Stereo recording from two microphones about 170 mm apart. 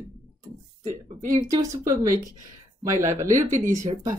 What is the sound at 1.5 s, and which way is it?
Speech, 20° right (ahead or behind).